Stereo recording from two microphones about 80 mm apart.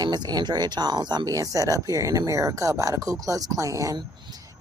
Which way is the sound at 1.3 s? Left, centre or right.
Right.